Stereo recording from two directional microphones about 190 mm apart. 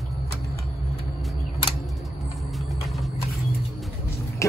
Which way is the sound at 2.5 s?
Centre (ahead or behind).